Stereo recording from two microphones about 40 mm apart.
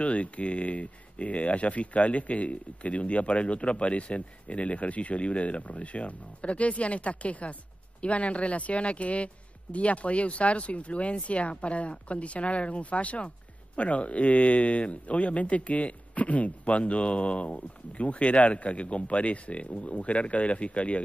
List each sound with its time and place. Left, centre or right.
0.0 s speech: left